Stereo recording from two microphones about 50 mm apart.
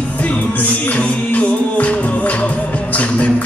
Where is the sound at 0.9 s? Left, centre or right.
Left.